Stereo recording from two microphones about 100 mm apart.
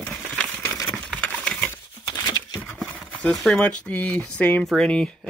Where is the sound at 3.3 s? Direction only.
5° left (ahead or behind).